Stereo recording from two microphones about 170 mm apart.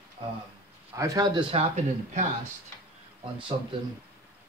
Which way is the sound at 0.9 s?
20° right (ahead or behind).